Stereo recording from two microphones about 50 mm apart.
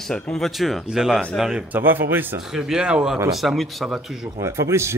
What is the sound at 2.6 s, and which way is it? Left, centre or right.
Speech, centre.